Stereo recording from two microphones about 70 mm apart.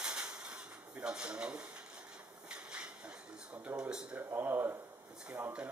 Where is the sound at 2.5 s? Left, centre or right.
Centre.